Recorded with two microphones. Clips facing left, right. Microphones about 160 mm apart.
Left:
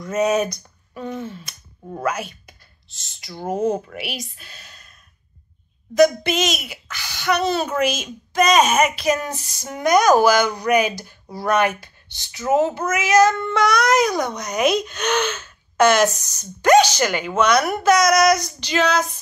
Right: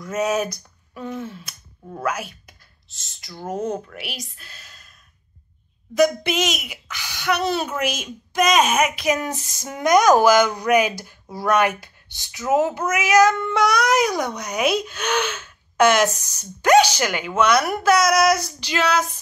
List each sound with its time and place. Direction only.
0.0 s female singing: 5° right (ahead or behind)
2.0 s speech: 5° right (ahead or behind)
5.9 s speech: 10° right (ahead or behind)
17.4 s female singing: 5° right (ahead or behind)